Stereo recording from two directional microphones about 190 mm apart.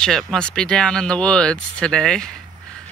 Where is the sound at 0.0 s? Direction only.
5° left (ahead or behind).